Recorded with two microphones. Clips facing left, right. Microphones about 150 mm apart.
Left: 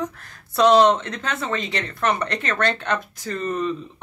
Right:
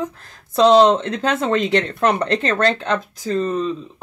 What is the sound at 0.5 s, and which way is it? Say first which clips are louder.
Speech: right 3 dB; 30° right (ahead or behind).